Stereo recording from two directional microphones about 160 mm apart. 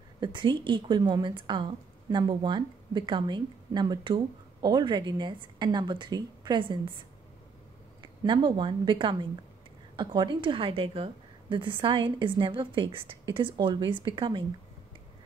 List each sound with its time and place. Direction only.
0.2 s a woman's voice: 30° right (ahead or behind)